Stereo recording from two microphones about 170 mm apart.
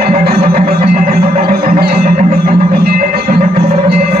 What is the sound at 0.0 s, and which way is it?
Music, 65° right (ahead or behind).